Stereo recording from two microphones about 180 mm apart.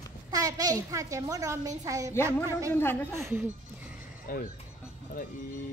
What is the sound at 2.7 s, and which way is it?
Speech, 10° left (ahead or behind).